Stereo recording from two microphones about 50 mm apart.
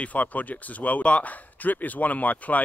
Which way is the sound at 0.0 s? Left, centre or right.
Left.